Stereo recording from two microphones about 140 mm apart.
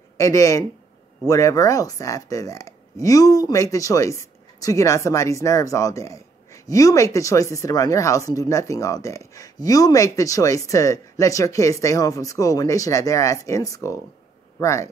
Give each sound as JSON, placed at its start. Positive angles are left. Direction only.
{"t": 0.2, "sound": "speech", "side_deg": 20}